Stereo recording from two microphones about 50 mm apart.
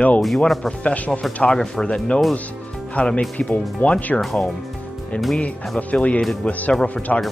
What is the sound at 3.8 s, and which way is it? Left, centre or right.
Speech, left.